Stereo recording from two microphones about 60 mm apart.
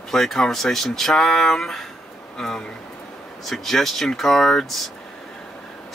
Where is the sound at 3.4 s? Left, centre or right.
Centre.